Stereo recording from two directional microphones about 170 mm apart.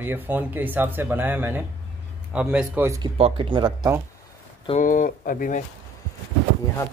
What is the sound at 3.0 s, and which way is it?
Speech, 30° right (ahead or behind).